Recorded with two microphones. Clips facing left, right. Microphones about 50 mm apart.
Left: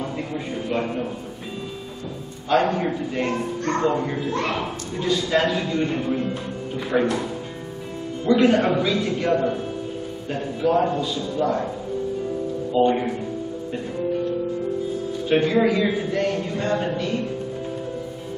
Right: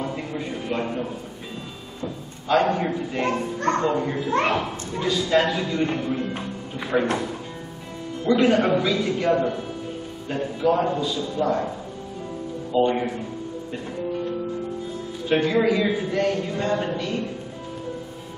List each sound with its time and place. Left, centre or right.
0.0 s a sound: centre
2.5 s speech: centre
4.3 s speech: right
4.6 s speech: centre
6.0 s music: centre
6.9 s speech: centre
8.3 s speech: centre
11.1 s a man's voice: centre
12.7 s speech: centre
15.2 s speech: centre